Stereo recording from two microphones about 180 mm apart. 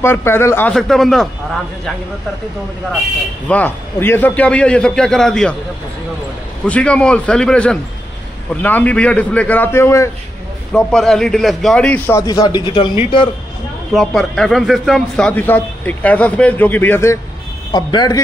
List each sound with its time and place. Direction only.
0.0 s a man's voice: 15° left (ahead or behind)
3.4 s a man's voice: 10° left (ahead or behind)
6.6 s a man's voice: 5° left (ahead or behind)
10.7 s a man's voice: 5° left (ahead or behind)
12.2 s speech: 20° left (ahead or behind)
13.9 s a man's voice: centre (ahead or behind); by 18.2 s 20° left (ahead or behind)